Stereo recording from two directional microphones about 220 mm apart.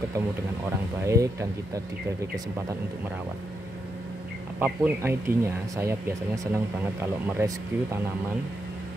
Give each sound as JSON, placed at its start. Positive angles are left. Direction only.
{"t": 1.0, "sound": "speech", "side_deg": -15}
{"t": 4.6, "sound": "speech", "side_deg": -5}